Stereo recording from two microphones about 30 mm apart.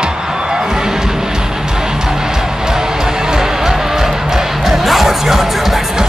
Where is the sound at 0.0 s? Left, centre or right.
Right.